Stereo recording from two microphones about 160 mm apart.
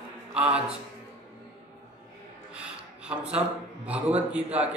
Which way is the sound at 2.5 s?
5° right (ahead or behind).